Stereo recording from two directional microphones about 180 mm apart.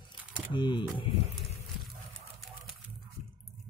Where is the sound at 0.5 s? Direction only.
25° left (ahead or behind).